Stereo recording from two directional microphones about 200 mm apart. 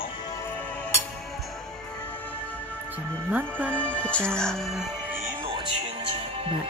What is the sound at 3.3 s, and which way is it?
Speech, 10° right (ahead or behind).